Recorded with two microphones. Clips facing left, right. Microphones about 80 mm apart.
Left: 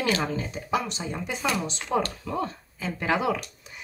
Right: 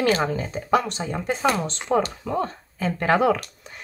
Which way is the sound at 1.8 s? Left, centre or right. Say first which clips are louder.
Right 3 dB; right.